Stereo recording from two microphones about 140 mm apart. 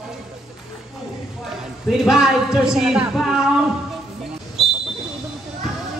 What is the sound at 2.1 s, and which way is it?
Music, 5° right (ahead or behind).